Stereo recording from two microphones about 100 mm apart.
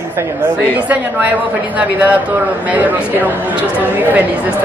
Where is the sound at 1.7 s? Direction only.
15° right (ahead or behind).